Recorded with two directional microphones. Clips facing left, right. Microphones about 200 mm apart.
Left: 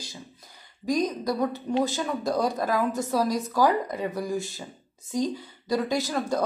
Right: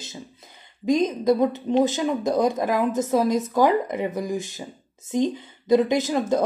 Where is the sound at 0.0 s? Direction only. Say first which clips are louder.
Right 4 dB; 25° right (ahead or behind).